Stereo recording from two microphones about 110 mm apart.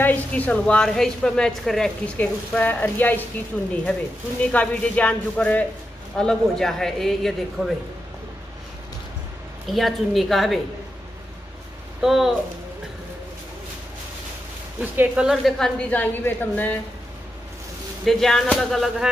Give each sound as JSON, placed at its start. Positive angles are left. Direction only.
{"t": 0.0, "sound": "a woman's voice", "side_deg": 15}
{"t": 2.1, "sound": "a woman's voice", "side_deg": 15}
{"t": 4.4, "sound": "a woman's voice", "side_deg": 10}
{"t": 9.7, "sound": "a man's voice", "side_deg": 0}
{"t": 12.0, "sound": "a man's voice", "side_deg": -5}
{"t": 14.8, "sound": "speech", "side_deg": -10}
{"t": 15.9, "sound": "a woman's voice", "side_deg": 15}
{"t": 18.0, "sound": "a man's voice", "side_deg": 5}